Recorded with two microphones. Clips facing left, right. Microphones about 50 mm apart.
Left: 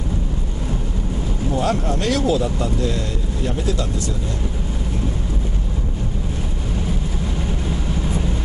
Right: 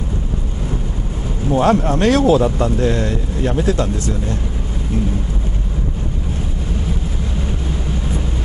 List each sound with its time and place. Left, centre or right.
1.5 s speech: right